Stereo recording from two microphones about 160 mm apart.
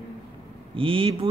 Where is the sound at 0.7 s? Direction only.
35° right (ahead or behind).